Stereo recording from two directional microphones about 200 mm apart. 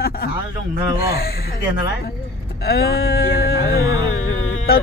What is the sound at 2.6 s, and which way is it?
Speech, 55° left (ahead or behind).